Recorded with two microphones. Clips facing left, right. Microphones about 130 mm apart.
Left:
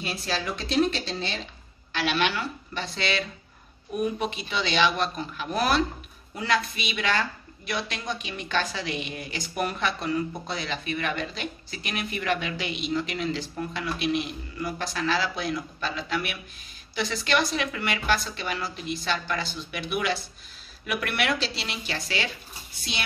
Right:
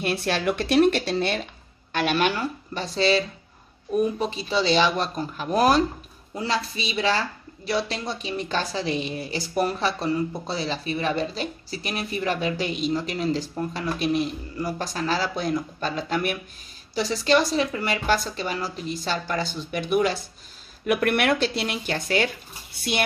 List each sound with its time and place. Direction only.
0.0 s a woman's voice: 65° right (ahead or behind); by 5.9 s 40° right (ahead or behind)
6.3 s a woman's voice: 30° right (ahead or behind); by 22.3 s 50° right (ahead or behind)